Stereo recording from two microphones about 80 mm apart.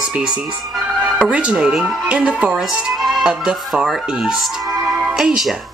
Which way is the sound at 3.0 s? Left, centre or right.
Centre.